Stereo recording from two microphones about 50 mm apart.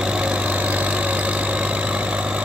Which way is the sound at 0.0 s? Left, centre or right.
Centre.